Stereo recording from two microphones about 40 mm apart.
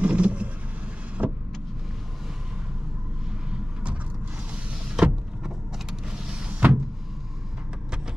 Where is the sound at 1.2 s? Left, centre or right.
Right.